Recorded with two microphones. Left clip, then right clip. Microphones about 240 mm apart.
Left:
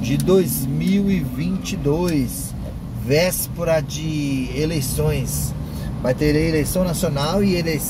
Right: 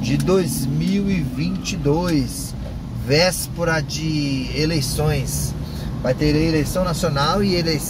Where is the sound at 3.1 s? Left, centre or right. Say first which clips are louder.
Right 1 dB; centre.